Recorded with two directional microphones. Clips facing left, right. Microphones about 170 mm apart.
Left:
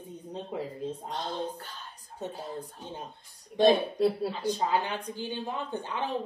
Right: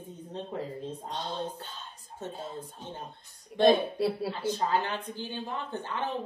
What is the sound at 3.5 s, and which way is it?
Speech, centre (ahead or behind).